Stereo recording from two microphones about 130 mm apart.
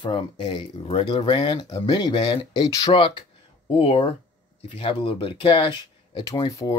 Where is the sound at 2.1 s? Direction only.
45° left (ahead or behind).